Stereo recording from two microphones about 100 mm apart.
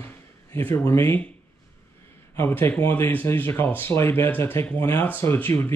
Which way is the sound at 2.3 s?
25° left (ahead or behind).